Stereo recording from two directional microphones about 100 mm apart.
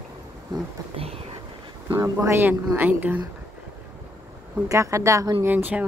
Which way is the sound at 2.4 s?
15° right (ahead or behind).